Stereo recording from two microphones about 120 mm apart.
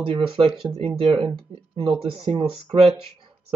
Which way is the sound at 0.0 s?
45° right (ahead or behind).